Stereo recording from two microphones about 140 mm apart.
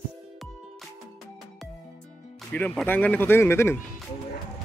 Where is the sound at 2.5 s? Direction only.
10° left (ahead or behind).